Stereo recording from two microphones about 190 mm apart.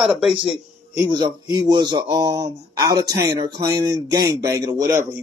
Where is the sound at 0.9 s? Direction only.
20° right (ahead or behind).